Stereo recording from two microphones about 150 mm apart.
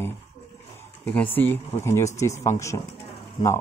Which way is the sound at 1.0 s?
10° left (ahead or behind).